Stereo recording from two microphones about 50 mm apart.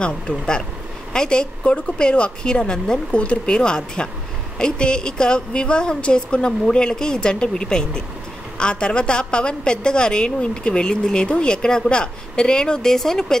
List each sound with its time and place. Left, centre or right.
0.0 s a woman's voice: centre